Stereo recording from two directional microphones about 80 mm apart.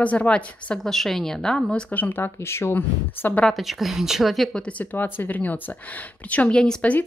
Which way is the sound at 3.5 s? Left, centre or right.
Centre.